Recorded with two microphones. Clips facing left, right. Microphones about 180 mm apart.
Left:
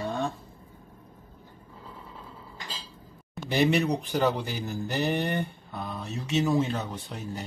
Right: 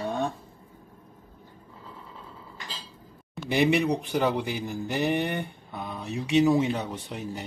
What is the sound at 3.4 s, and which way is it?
Speech, 15° right (ahead or behind).